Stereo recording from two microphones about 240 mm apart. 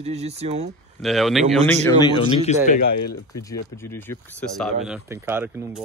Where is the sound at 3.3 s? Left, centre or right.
Centre.